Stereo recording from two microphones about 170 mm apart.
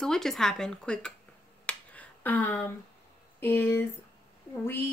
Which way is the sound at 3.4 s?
10° left (ahead or behind).